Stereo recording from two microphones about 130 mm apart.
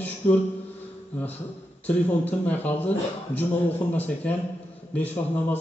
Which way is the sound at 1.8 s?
15° left (ahead or behind).